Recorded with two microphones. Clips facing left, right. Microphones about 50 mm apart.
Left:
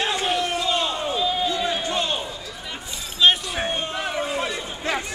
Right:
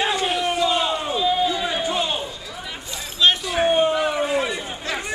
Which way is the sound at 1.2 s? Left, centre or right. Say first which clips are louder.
Right 3 dB; centre.